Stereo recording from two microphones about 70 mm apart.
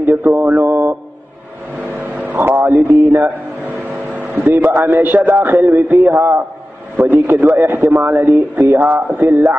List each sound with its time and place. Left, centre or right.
0.0 s mantra: right
1.8 s vehicle: right
2.9 s a sound: right
4.6 s a man's voice: right
8.7 s mantra: right